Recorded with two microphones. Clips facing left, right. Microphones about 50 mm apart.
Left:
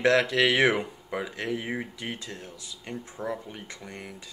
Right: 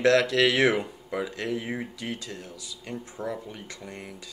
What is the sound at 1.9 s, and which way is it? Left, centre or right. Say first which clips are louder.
Speech: right 1 dB; left.